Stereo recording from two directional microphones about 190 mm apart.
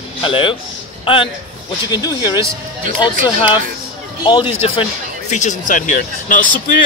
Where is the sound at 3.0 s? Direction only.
25° left (ahead or behind).